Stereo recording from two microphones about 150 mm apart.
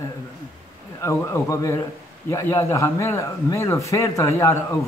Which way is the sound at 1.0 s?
20° left (ahead or behind).